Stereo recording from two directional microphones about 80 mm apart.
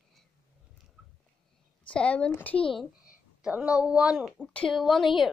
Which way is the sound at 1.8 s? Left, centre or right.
Centre.